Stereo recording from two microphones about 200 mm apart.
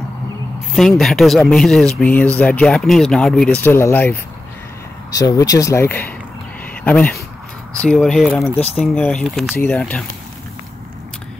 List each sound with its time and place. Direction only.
0.7 s speech: centre (ahead or behind)